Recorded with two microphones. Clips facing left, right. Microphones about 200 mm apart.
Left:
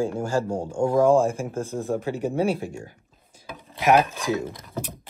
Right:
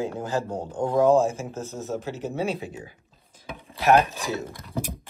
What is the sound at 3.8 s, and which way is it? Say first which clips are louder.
Speech: even; 15° left (ahead or behind).